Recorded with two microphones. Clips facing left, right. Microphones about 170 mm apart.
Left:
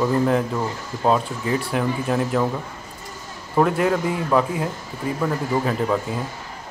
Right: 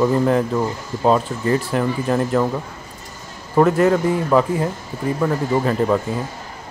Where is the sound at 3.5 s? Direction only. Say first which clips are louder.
Right 4 dB; centre (ahead or behind).